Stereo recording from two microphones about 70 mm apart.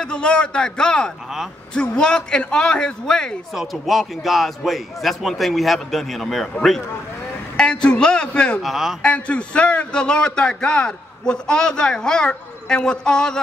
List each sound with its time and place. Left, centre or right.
0.0 s a man's voice: centre
7.5 s a man's voice: centre
8.6 s a man's voice: centre
9.0 s a man's voice: centre